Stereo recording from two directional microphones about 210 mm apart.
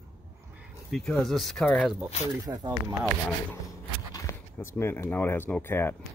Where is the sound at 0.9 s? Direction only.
5° left (ahead or behind).